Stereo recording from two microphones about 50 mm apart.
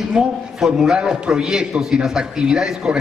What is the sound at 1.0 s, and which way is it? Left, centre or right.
A man's voice, centre.